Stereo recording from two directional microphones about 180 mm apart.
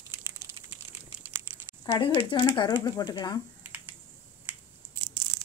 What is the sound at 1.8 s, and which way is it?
Speech, 25° left (ahead or behind).